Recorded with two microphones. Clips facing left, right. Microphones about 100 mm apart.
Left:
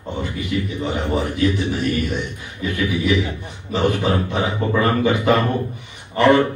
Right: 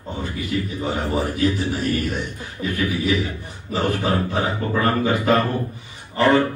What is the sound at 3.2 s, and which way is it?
A man's voice, 20° left (ahead or behind).